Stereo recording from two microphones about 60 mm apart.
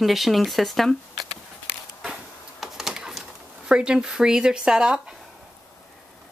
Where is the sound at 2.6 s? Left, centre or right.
Centre.